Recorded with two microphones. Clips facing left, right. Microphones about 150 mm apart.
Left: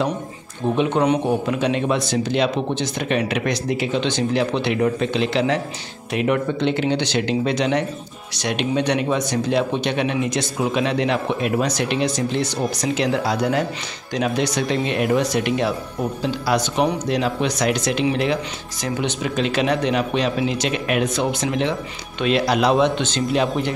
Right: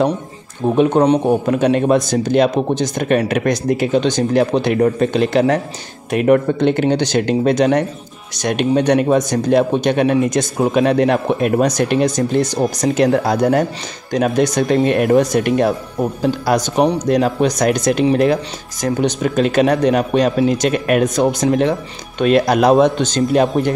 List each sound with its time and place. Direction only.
0.7 s speech: 40° right (ahead or behind)